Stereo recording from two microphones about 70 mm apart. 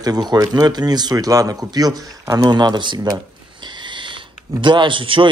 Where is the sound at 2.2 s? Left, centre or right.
Right.